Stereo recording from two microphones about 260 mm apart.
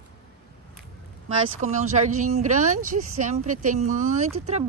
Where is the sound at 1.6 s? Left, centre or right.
Right.